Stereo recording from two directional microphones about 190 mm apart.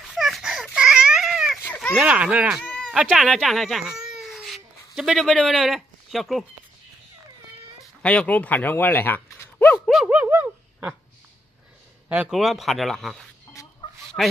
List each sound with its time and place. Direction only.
0.0 s a sound: centre (ahead or behind)
1.6 s a sound: 10° left (ahead or behind)
2.0 s speech: 5° right (ahead or behind)
8.0 s speech: 5° left (ahead or behind)
9.8 s speech: 5° right (ahead or behind)
12.1 s speech: 5° right (ahead or behind)
13.5 s chicken: 15° left (ahead or behind)
14.2 s a man's voice: 5° left (ahead or behind)